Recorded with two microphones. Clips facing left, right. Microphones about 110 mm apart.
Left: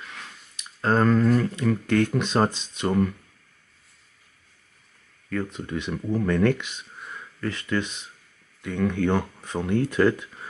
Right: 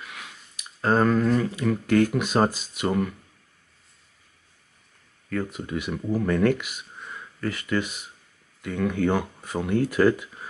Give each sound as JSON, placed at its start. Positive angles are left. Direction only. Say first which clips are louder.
{"t": 0.0, "sound": "speech", "louder": "even", "side_deg": -10}
{"t": 5.3, "sound": "speech", "louder": "even", "side_deg": -5}